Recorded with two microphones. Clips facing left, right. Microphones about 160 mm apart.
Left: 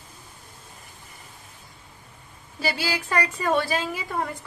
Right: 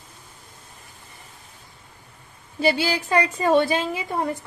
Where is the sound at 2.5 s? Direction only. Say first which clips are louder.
Right 6 dB; 25° right (ahead or behind).